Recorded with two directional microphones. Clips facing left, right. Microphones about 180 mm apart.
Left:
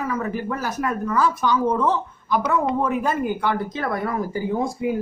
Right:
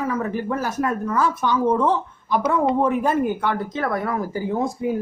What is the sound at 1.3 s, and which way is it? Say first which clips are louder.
Speech: right 2 dB; 20° right (ahead or behind).